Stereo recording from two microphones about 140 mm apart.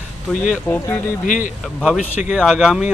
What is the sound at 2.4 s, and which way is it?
Speech, centre (ahead or behind).